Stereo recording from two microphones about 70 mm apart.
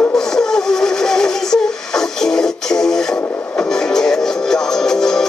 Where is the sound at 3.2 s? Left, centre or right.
Centre.